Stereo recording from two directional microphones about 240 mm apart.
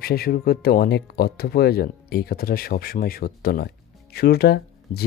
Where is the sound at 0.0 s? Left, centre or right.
Left.